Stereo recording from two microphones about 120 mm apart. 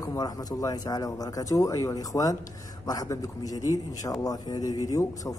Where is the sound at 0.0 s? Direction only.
30° left (ahead or behind).